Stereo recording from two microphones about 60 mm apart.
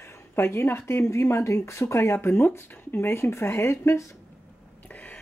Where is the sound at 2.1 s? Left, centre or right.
Left.